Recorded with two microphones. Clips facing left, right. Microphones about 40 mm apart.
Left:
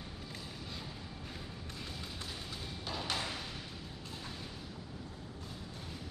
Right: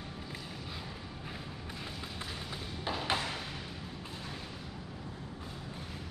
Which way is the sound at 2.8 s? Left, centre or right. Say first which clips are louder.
Right 5 dB; right.